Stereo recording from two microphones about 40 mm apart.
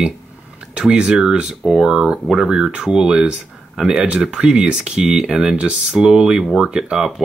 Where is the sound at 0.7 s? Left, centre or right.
Right.